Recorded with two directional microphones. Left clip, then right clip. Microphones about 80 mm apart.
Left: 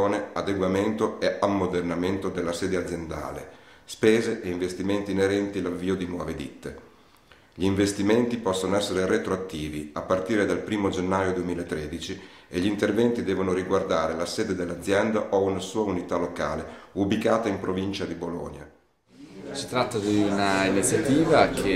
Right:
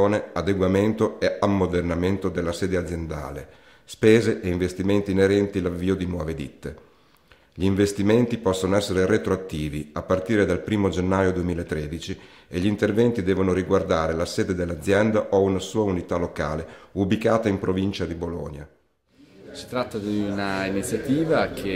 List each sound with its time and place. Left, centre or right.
0.0 s speech: right
19.5 s speech: centre